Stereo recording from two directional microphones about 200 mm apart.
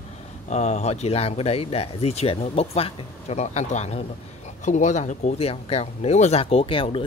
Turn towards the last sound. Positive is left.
turn(degrees=25)  # may be behind; listen again after turning